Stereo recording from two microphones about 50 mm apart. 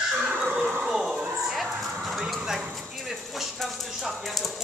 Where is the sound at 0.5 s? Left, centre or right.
Right.